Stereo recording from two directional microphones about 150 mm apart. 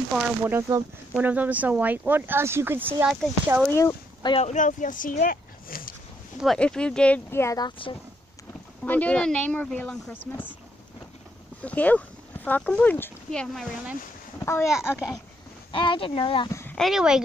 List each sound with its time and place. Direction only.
0.1 s speech: 15° right (ahead or behind)
3.7 s speech: 20° left (ahead or behind)
4.4 s speech: 55° left (ahead or behind); by 5.9 s 70° left (ahead or behind)
6.4 s speech: 5° left (ahead or behind); by 7.9 s 25° left (ahead or behind)
8.8 s speech: 10° left (ahead or behind)
11.6 s speech: 10° left (ahead or behind)
14.4 s speech: 15° left (ahead or behind)
14.7 s speech: 5° right (ahead or behind)
15.7 s speech: 35° left (ahead or behind)
16.4 s speech: 20° left (ahead or behind)
16.7 s speech: centre (ahead or behind)